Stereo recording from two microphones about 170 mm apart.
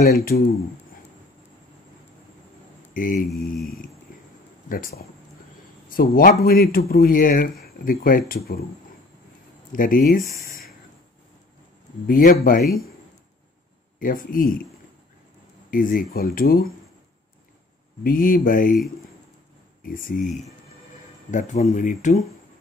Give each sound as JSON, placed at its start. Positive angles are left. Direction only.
{"t": 0.1, "sound": "speech", "side_deg": 65}
{"t": 2.9, "sound": "mantra", "side_deg": 55}
{"t": 4.1, "sound": "a sound", "side_deg": 55}
{"t": 4.6, "sound": "a man's voice", "side_deg": 55}
{"t": 9.7, "sound": "speech", "side_deg": 55}
{"t": 10.2, "sound": "speech", "side_deg": -20}
{"t": 12.1, "sound": "speech", "side_deg": 55}
{"t": 13.9, "sound": "speech", "side_deg": 55}
{"t": 15.7, "sound": "speech", "side_deg": 55}
{"t": 18.0, "sound": "speech", "side_deg": 55}
{"t": 19.8, "sound": "speech", "side_deg": 55}